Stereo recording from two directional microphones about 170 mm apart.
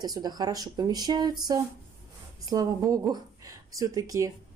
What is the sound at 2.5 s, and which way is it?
Speech, 20° right (ahead or behind).